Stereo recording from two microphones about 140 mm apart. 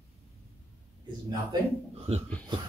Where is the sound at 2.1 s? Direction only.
45° right (ahead or behind).